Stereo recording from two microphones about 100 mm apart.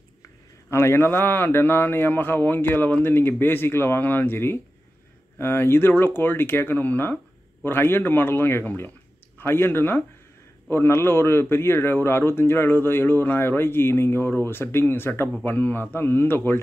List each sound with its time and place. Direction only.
0.7 s a man's voice: 25° left (ahead or behind)